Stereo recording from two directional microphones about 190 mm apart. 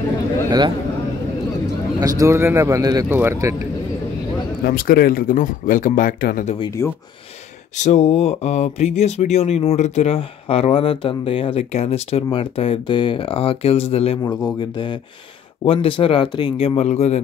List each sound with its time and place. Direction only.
0.5 s a man's voice: 25° right (ahead or behind)
2.0 s speech: 20° right (ahead or behind)
4.6 s speech: 50° left (ahead or behind)
6.8 s speech: 15° left (ahead or behind)
7.7 s speech: 35° left (ahead or behind)